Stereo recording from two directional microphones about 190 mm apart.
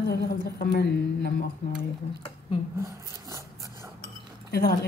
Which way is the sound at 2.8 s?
15° right (ahead or behind).